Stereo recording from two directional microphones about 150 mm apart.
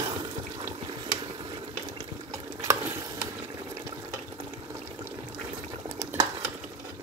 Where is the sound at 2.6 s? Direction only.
20° right (ahead or behind).